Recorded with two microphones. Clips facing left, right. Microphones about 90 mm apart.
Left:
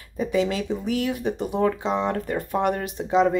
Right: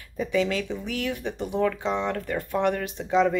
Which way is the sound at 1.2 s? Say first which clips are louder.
Left 3 dB; 30° left (ahead or behind).